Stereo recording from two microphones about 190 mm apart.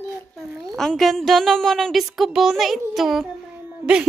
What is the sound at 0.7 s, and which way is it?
A woman's voice, centre (ahead or behind).